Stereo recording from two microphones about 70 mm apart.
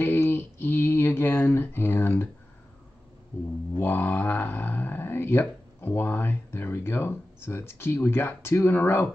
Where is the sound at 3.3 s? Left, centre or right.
Left.